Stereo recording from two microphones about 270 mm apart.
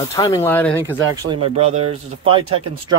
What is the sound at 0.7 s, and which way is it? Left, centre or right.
Speech, centre.